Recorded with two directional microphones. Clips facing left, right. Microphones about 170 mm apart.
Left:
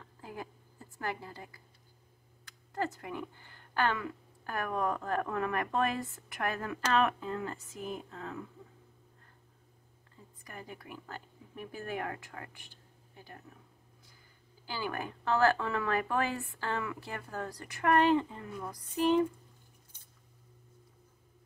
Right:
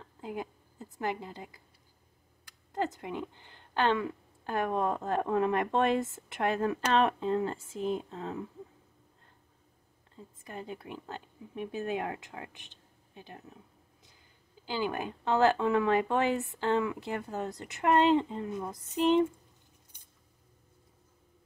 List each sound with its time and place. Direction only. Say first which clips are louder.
0.2 s a sound: right 6 dB; 20° right (ahead or behind)
2.4 s speech: right 2 dB; 20° right (ahead or behind)
10.4 s speech: right 5 dB; 25° right (ahead or behind)
14.7 s speech: right 4 dB; 20° right (ahead or behind)